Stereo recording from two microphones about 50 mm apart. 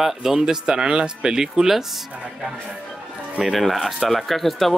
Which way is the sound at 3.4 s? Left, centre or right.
Centre.